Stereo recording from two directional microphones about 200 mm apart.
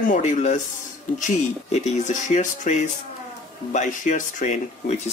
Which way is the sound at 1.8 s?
40° left (ahead or behind).